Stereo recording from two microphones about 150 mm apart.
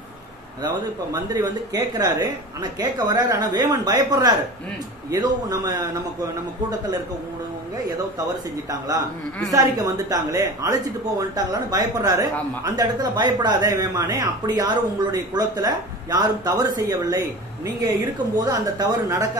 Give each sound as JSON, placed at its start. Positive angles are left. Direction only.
{"t": 1.1, "sound": "speech", "side_deg": -25}
{"t": 8.6, "sound": "speech", "side_deg": -25}
{"t": 18.3, "sound": "speech", "side_deg": -25}